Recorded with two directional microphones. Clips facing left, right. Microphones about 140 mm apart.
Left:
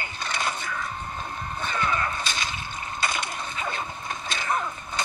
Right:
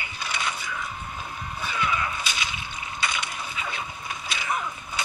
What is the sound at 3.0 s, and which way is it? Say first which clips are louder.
Crushing: left 1 dB; 50° left (ahead or behind).